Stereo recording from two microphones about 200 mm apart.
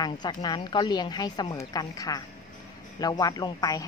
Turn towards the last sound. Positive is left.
turn(degrees=20)  # may be behind; listen again after turning